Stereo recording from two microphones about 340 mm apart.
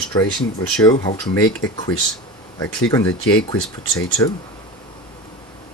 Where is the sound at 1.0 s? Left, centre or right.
Centre.